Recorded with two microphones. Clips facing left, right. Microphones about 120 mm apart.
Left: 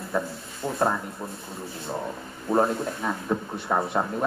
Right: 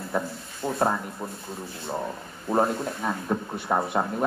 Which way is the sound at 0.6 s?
20° right (ahead or behind).